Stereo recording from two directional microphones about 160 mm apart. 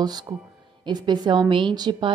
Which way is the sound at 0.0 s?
25° right (ahead or behind).